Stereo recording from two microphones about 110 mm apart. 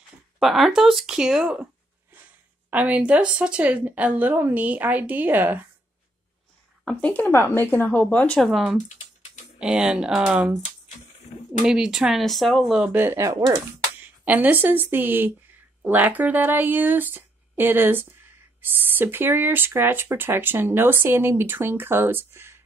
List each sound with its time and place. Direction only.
0.4 s speech: centre (ahead or behind)
2.7 s speech: 15° right (ahead or behind)
6.8 s a woman's voice: 10° left (ahead or behind)
8.4 s speech: centre (ahead or behind)
8.8 s typing: 90° left
9.6 s speech: 5° right (ahead or behind)
11.6 s speech: 5° right (ahead or behind)
12.9 s speech: 20° right (ahead or behind)